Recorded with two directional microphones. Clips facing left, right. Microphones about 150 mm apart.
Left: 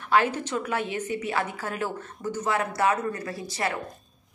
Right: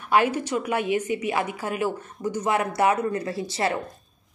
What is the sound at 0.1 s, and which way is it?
A woman's voice, 15° right (ahead or behind).